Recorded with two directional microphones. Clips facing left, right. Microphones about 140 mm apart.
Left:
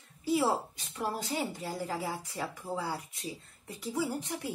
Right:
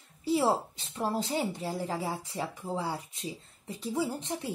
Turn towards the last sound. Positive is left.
turn(degrees=-25)  # may be behind; listen again after turning